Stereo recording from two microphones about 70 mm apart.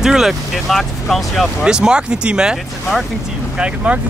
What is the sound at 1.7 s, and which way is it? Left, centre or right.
Speech, centre.